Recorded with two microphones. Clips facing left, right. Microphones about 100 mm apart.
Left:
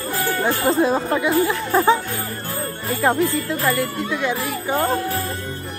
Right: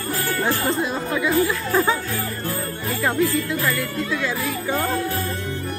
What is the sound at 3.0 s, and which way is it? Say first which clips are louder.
Speech: left 2 dB; 30° left (ahead or behind).